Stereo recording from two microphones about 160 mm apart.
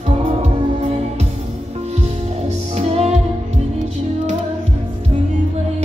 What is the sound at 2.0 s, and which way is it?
Music, 40° right (ahead or behind).